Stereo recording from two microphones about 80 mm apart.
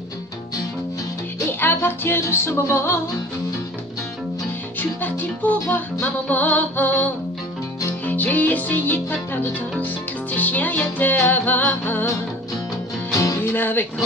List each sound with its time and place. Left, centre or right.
1.4 s music: left
4.7 s music: left
13.4 s music: left